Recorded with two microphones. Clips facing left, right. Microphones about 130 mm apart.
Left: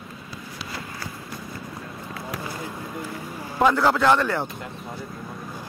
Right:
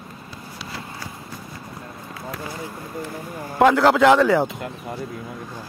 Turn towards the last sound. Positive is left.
turn(degrees=-85)